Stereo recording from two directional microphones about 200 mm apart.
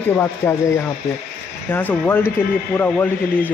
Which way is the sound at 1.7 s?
10° left (ahead or behind).